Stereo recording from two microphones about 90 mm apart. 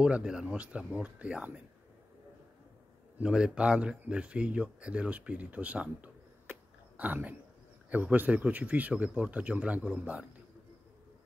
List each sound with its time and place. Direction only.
0.0 s speech: 10° right (ahead or behind)
3.2 s speech: 10° right (ahead or behind)